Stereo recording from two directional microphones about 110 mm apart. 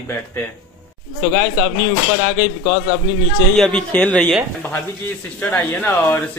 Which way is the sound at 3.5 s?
5° left (ahead or behind).